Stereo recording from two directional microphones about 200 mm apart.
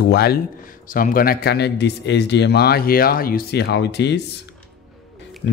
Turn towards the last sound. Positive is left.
turn(degrees=60)  # may be behind; listen again after turning